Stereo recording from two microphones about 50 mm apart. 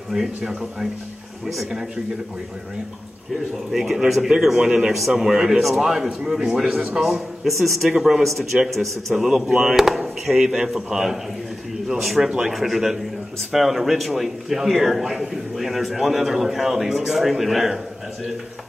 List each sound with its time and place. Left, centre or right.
0.5 s a man's voice: centre
1.4 s a man's voice: centre
3.7 s a man's voice: centre
6.7 s a man's voice: right
7.0 s a man's voice: centre